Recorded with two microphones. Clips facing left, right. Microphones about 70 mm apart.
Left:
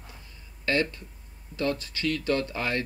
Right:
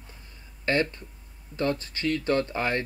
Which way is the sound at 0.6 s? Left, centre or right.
Right.